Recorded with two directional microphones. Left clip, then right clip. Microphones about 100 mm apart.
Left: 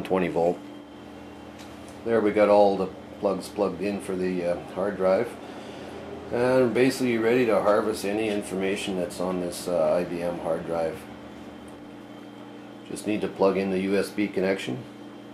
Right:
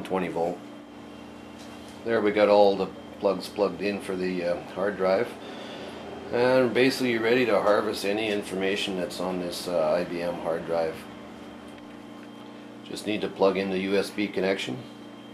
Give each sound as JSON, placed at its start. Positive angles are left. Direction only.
{"t": 0.0, "sound": "speech", "side_deg": 15}
{"t": 2.0, "sound": "speech", "side_deg": 0}
{"t": 6.3, "sound": "speech", "side_deg": 0}
{"t": 13.0, "sound": "speech", "side_deg": 5}